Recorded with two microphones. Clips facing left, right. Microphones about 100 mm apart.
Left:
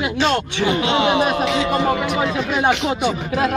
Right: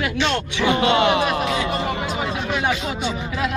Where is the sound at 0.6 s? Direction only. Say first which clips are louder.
Right 2 dB; 55° right (ahead or behind).